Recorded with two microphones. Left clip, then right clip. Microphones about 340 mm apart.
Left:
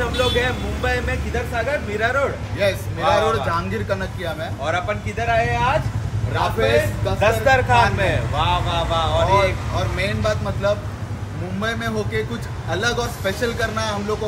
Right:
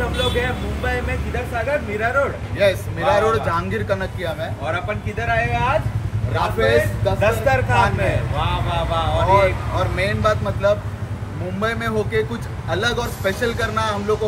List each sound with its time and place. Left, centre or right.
0.2 s vehicle: centre
1.7 s speech: centre